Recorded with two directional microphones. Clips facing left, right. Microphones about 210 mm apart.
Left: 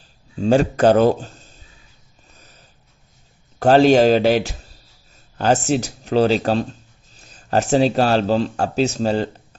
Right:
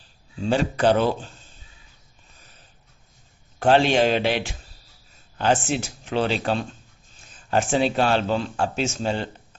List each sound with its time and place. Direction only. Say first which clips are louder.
0.4 s speech: left 6 dB; 45° left (ahead or behind)
3.5 s a man's voice: left 6 dB; 40° left (ahead or behind)